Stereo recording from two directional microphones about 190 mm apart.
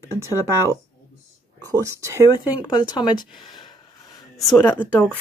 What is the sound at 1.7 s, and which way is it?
Speech, 15° right (ahead or behind).